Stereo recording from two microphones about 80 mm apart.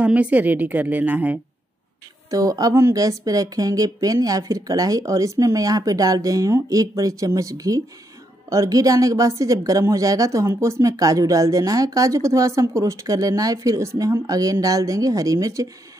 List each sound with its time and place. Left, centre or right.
0.0 s speech: centre
2.3 s a woman's voice: right